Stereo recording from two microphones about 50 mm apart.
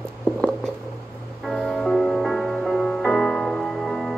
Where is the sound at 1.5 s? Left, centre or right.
Centre.